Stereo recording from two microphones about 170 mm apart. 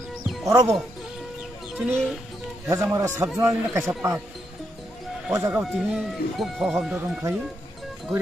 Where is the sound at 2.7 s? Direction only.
20° right (ahead or behind).